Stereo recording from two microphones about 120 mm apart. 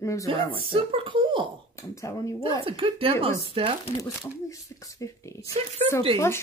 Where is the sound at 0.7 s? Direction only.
50° right (ahead or behind).